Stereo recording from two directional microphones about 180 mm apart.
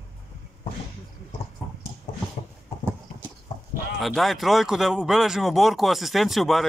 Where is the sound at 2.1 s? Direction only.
35° left (ahead or behind).